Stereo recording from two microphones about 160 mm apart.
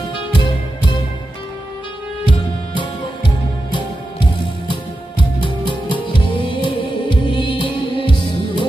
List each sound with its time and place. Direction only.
2.2 s music: 30° left (ahead or behind)